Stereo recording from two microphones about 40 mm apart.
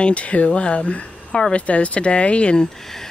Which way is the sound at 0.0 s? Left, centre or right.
Left.